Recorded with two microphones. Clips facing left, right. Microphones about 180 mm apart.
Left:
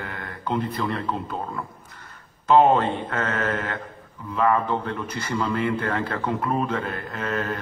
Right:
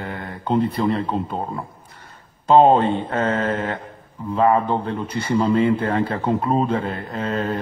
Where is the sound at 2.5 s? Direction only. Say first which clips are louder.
Right 4 dB; 30° right (ahead or behind).